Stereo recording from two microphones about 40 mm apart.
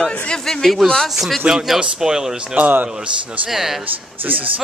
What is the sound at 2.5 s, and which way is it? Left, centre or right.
Speech, right.